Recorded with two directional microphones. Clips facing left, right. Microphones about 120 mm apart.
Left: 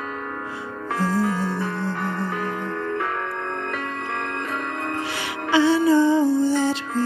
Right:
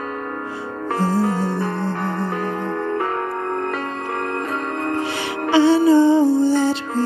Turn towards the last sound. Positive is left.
turn(degrees=-30)  # may be behind; listen again after turning